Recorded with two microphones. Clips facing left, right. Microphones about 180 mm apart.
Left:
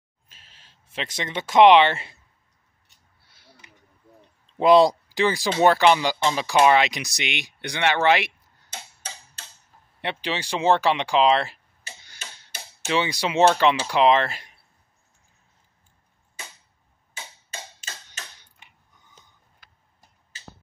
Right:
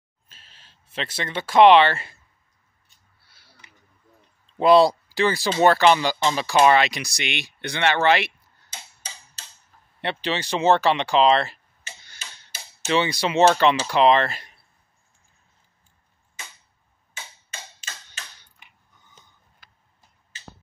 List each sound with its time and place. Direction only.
0.3 s speech: 15° left (ahead or behind)
3.3 s a sound: 20° left (ahead or behind)
4.6 s speech: 15° left (ahead or behind)
8.6 s tick-tock: 55° left (ahead or behind)
10.0 s speech: 10° left (ahead or behind)
12.2 s tick-tock: 55° left (ahead or behind)
12.8 s speech: 10° left (ahead or behind)
17.8 s tick-tock: 50° left (ahead or behind)